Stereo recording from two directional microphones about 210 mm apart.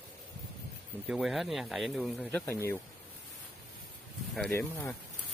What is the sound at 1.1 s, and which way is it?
Speech, centre (ahead or behind).